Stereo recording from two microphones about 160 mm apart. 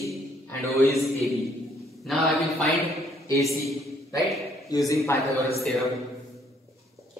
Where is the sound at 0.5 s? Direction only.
15° left (ahead or behind).